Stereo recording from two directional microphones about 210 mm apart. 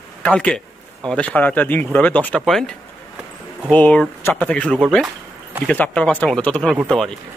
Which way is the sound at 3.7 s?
5° left (ahead or behind).